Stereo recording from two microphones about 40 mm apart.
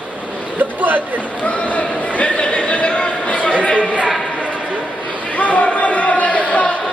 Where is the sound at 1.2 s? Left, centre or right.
Left.